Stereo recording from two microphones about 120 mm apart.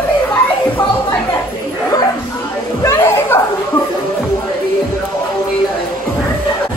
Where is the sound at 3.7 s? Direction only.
15° left (ahead or behind).